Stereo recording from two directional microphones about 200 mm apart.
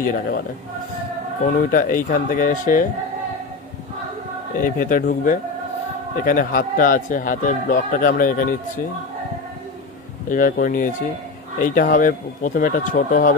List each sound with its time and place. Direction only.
0.0 s speech: 45° left (ahead or behind)
1.5 s speech: 45° left (ahead or behind)
4.6 s speech: 45° left (ahead or behind)
6.2 s speech: 45° left (ahead or behind)
10.3 s speech: 40° left (ahead or behind)